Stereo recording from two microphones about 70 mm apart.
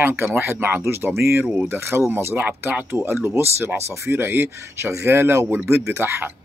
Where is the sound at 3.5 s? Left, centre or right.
Right.